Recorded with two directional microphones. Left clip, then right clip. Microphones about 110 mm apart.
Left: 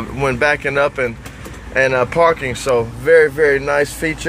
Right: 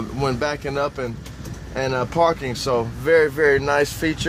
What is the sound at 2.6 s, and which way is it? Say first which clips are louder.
Speech: left 6 dB; 20° right (ahead or behind).